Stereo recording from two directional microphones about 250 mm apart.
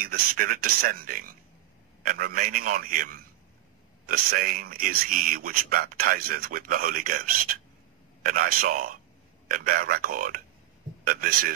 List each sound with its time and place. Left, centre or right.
0.0 s speech: right